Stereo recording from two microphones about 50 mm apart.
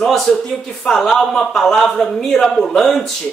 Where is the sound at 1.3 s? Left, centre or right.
Centre.